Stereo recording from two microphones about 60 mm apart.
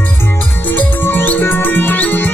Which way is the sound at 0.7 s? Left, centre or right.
Left.